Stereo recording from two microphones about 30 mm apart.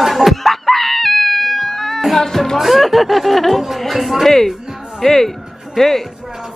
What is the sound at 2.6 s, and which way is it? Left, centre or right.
Speech, centre.